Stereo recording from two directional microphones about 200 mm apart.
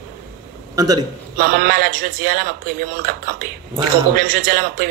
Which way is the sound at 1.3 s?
50° right (ahead or behind).